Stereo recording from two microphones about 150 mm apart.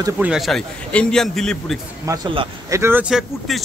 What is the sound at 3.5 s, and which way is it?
Speech, centre (ahead or behind).